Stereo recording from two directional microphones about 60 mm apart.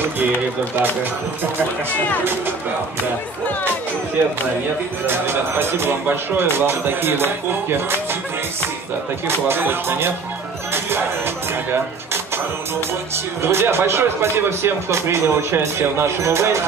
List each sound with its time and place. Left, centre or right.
5.0 s speech: right
9.5 s speech: right
10.7 s music: right
13.1 s speech: right